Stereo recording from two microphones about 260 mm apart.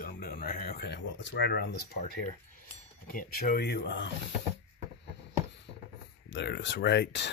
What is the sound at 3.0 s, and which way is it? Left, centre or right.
Speech, left.